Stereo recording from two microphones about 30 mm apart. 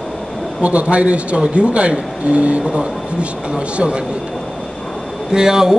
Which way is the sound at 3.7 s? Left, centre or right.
Right.